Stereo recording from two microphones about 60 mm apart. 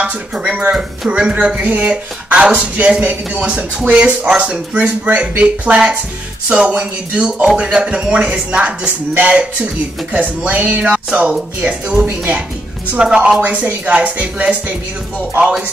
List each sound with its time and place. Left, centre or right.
0.0 s speech: right